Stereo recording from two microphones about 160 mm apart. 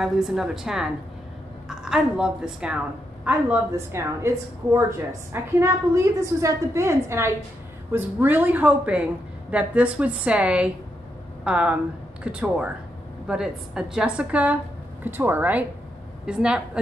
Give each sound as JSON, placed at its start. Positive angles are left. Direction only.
{"t": 0.0, "sound": "a woman's voice", "side_deg": 0}